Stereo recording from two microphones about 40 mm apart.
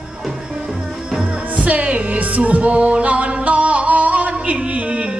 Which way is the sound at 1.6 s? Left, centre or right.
Right.